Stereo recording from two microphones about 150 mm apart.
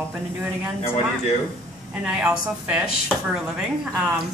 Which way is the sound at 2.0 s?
5° right (ahead or behind).